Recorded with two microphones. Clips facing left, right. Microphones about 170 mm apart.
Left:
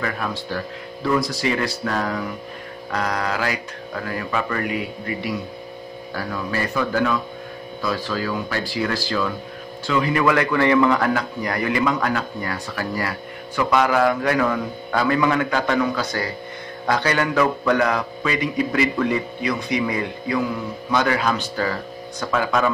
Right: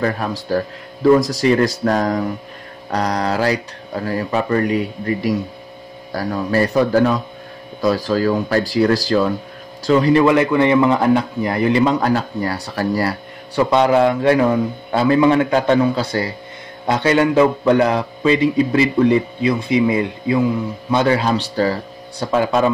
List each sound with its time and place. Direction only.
0.5 s a man's voice: 40° right (ahead or behind)